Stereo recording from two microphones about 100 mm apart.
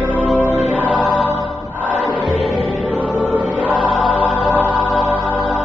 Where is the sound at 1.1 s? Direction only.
15° left (ahead or behind).